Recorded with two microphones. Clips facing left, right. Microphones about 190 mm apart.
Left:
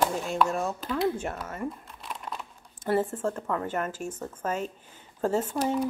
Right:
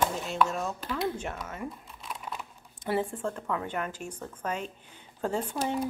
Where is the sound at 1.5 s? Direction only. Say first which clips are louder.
Left 4 dB; 5° right (ahead or behind).